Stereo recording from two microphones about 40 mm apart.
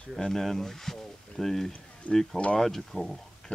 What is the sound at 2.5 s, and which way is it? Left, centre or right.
Speech, centre.